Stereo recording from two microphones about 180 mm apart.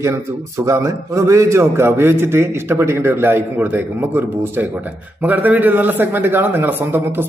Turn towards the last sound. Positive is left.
turn(degrees=-10)  # may be behind; listen again after turning